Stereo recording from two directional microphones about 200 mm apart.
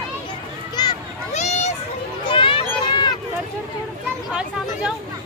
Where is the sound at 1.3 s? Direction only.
35° left (ahead or behind).